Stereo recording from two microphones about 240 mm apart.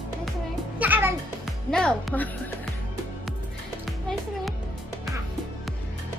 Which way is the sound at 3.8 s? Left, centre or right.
Centre.